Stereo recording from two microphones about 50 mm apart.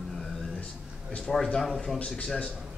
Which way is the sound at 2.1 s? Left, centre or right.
Centre.